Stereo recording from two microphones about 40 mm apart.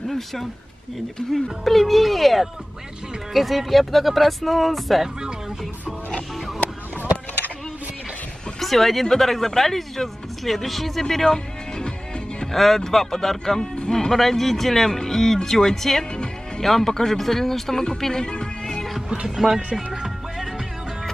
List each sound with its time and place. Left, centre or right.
0.1 s speech: centre
8.5 s speech: centre
18.3 s music: left
19.2 s music: centre